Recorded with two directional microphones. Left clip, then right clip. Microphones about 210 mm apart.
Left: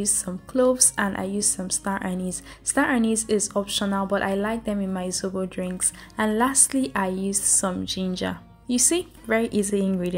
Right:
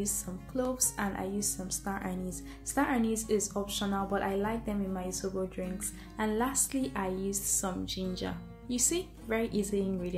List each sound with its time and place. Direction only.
0.0 s a woman's voice: 40° left (ahead or behind)